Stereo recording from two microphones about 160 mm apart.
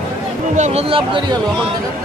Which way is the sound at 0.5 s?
45° right (ahead or behind).